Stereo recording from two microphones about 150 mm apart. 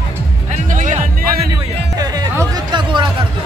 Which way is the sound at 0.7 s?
55° right (ahead or behind).